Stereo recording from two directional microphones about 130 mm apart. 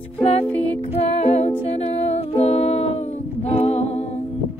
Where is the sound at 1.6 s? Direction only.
50° left (ahead or behind).